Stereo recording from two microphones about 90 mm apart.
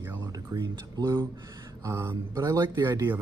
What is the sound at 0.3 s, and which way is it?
Speech, 45° right (ahead or behind).